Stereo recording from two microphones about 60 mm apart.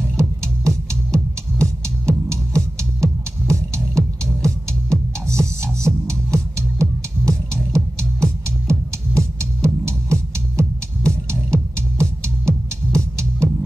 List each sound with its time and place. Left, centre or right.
0.2 s music: right